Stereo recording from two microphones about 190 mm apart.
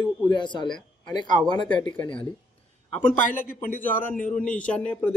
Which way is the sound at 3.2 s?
45° left (ahead or behind).